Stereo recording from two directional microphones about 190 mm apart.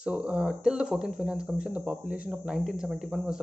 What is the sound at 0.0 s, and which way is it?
Speech, 5° right (ahead or behind).